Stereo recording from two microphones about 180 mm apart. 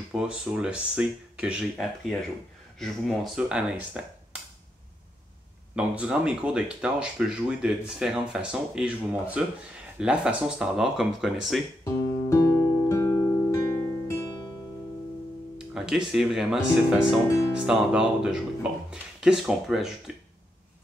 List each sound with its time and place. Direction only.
0.1 s speech: 5° right (ahead or behind)
5.8 s speech: 5° right (ahead or behind)
11.8 s music: 15° left (ahead or behind)
15.5 s speech: 5° right (ahead or behind)